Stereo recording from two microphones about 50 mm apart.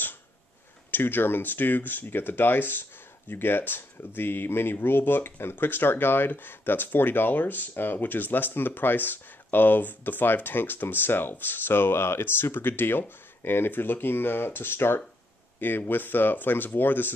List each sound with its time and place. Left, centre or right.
0.9 s speech: left